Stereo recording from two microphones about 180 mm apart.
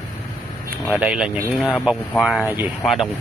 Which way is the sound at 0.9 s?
5° right (ahead or behind).